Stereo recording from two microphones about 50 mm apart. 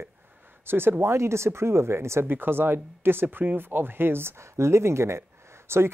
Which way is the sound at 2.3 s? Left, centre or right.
Right.